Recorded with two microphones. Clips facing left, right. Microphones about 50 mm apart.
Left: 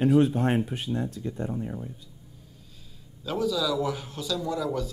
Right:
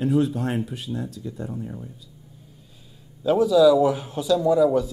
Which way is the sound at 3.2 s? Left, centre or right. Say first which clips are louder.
Right 11 dB; centre.